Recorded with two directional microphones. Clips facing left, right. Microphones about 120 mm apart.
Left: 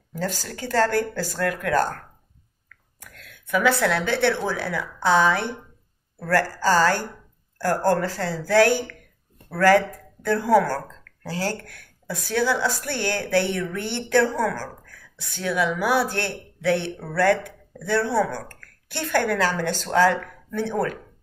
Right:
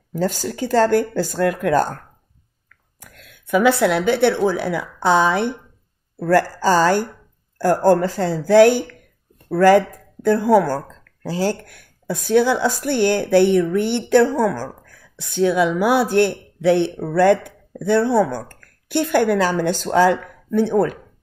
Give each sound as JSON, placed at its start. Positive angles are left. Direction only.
{"t": 0.2, "sound": "speech", "side_deg": -15}
{"t": 3.0, "sound": "a woman's voice", "side_deg": -20}